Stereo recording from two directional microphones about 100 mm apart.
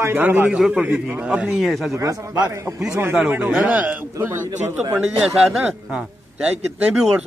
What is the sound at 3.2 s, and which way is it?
A man's voice, 15° right (ahead or behind).